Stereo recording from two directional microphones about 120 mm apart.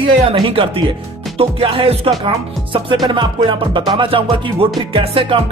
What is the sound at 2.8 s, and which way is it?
Speech, 40° right (ahead or behind).